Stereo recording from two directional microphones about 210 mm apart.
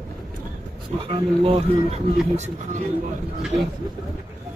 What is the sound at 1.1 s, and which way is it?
Speech, 25° right (ahead or behind).